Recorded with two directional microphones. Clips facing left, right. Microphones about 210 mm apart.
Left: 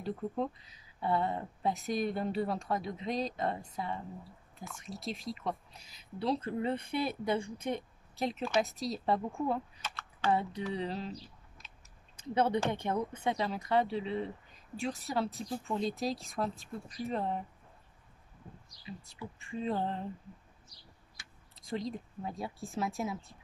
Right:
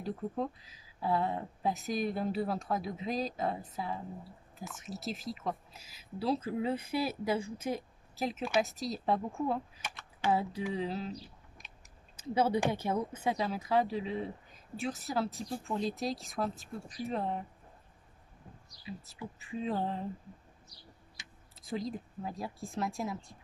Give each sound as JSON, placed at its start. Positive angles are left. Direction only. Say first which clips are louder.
{"t": 0.0, "sound": "speech", "louder": "left 1 dB", "side_deg": 0}
{"t": 9.8, "sound": "speech", "louder": "left 1 dB", "side_deg": -15}
{"t": 10.3, "sound": "speech", "louder": "right 1 dB", "side_deg": -5}
{"t": 12.2, "sound": "speech", "louder": "right 1 dB", "side_deg": -5}
{"t": 19.1, "sound": "speech", "louder": "even", "side_deg": -5}
{"t": 21.2, "sound": "tick-tock", "louder": "right 1 dB", "side_deg": -20}
{"t": 21.5, "sound": "speech", "louder": "even", "side_deg": -5}